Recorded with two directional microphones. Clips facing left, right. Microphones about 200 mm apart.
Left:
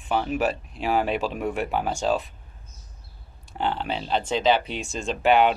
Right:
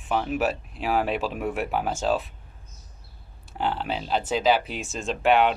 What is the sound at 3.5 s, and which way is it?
Speech, 5° right (ahead or behind).